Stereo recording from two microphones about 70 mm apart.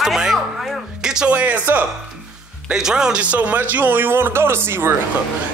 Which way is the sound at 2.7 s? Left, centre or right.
Centre.